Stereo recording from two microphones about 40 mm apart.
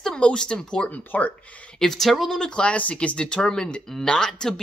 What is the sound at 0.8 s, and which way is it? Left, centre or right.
Speech, left.